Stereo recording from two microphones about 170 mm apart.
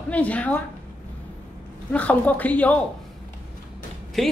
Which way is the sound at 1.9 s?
10° left (ahead or behind).